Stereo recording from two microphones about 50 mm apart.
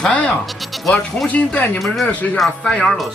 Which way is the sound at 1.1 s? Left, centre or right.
Left.